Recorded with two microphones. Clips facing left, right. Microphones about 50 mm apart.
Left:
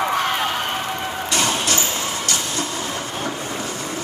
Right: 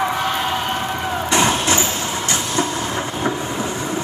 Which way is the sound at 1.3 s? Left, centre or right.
Right.